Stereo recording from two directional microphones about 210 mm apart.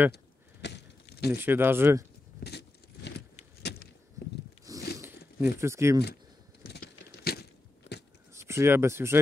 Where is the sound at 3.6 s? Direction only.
50° left (ahead or behind).